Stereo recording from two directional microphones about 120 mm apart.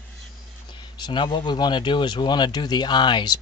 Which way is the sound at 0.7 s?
40° left (ahead or behind).